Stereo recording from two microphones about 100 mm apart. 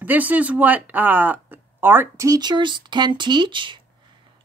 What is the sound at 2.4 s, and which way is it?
A woman's voice, 50° right (ahead or behind).